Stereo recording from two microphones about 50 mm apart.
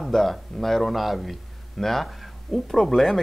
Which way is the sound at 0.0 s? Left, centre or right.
Centre.